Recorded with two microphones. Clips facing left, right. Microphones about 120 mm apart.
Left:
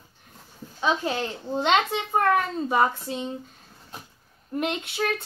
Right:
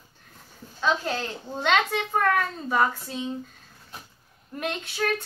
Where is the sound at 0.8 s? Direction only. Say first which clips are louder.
Left 1 dB; 15° left (ahead or behind).